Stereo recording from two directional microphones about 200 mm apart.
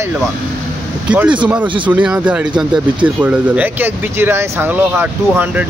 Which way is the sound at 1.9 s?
10° right (ahead or behind).